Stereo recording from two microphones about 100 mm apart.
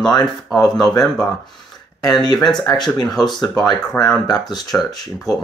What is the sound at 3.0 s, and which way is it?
Speech, 5° left (ahead or behind).